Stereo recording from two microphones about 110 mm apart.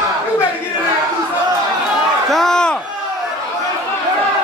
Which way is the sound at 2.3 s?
5° left (ahead or behind).